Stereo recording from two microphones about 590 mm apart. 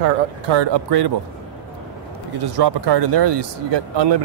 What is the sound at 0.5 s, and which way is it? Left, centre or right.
Speech, right.